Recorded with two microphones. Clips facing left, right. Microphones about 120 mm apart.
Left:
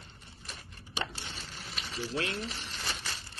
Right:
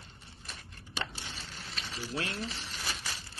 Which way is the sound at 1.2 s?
Centre (ahead or behind).